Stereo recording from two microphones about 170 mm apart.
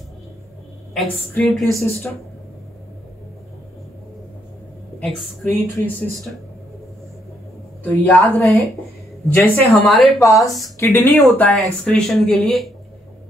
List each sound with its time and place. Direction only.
0.9 s speech: centre (ahead or behind)
5.0 s speech: 5° left (ahead or behind)
7.8 s a woman's voice: 10° left (ahead or behind)